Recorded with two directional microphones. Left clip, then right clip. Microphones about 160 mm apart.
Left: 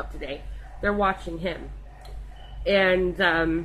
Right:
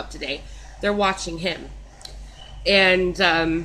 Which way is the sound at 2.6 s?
10° right (ahead or behind).